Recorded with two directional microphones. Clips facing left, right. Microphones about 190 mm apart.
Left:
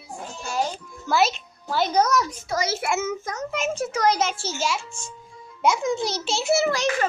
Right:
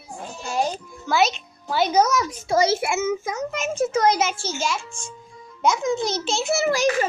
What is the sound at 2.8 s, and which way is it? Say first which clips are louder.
Speech: right 2 dB; 15° right (ahead or behind).